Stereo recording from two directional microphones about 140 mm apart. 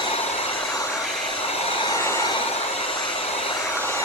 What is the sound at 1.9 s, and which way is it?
Train, 20° left (ahead or behind).